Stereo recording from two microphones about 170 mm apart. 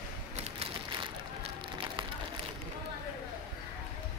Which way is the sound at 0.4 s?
30° right (ahead or behind).